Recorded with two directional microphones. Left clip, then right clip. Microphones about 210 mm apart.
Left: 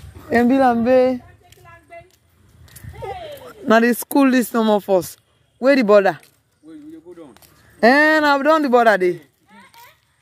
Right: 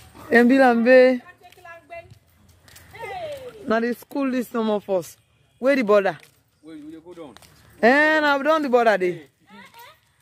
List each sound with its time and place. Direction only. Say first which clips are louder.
0.3 s speech: even; centre (ahead or behind)
3.6 s speech: left 8 dB; 45° left (ahead or behind); by 6.2 s 25° left (ahead or behind)
6.6 s a sound: left 1 dB; centre (ahead or behind)
7.8 s speech: left 3 dB; 30° left (ahead or behind)